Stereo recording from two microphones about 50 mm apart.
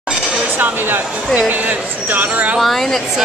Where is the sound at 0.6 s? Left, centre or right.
Right.